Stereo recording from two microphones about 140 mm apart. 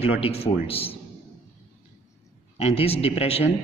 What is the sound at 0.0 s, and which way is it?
Speech, 45° left (ahead or behind).